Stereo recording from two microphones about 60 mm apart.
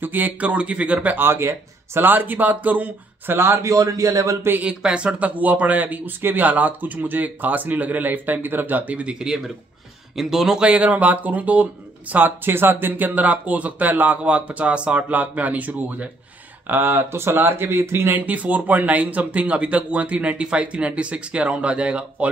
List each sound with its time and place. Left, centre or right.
0.0 s speech: right
1.2 s speech: right
3.3 s a man's voice: right
3.6 s speech: right
4.6 s speech: centre
10.7 s speech: right
12.4 s speech: right
18.1 s speech: right